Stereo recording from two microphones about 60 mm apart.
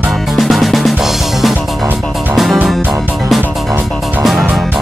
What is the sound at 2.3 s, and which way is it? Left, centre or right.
Music, centre.